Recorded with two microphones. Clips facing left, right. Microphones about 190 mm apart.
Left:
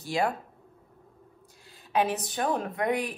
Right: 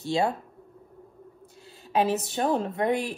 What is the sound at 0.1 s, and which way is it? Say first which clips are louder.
Speech: right 2 dB; 25° right (ahead or behind).